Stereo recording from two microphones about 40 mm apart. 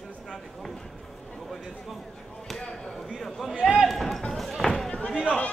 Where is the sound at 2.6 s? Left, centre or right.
Centre.